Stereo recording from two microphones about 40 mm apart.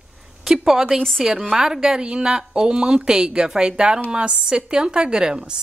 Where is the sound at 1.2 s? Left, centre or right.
Centre.